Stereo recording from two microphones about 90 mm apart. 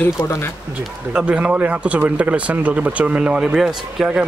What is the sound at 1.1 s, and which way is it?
Speech, 10° right (ahead or behind).